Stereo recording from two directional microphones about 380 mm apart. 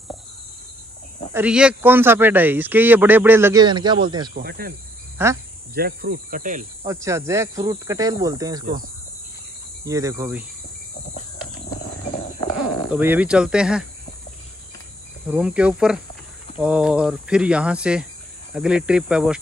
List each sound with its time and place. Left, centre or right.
1.3 s speech: centre
4.3 s cricket: right
5.1 s speech: centre
5.8 s cricket: right
6.9 s speech: centre
9.8 s speech: centre
12.9 s speech: centre
15.2 s speech: centre